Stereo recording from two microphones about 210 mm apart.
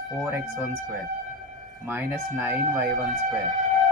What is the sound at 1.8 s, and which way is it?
Speech, 10° right (ahead or behind).